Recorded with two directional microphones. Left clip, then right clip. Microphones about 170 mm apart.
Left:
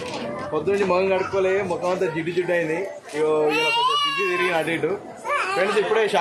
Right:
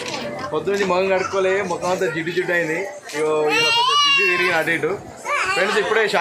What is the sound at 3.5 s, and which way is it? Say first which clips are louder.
Speech: right 3 dB; 40° left (ahead or behind).